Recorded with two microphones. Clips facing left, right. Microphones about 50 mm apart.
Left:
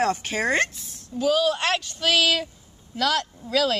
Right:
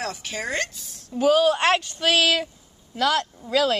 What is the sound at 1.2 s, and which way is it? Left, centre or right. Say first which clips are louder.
A woman's voice: right 4 dB; right.